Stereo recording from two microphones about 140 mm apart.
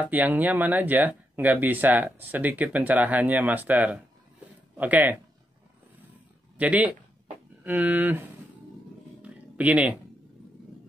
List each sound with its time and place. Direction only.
0.0 s speech: 10° right (ahead or behind)
6.5 s speech: 10° right (ahead or behind)
9.2 s roaring cats: 10° right (ahead or behind)